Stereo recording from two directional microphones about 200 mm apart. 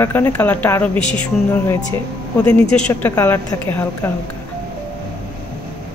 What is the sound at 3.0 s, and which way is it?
Speech, 10° left (ahead or behind).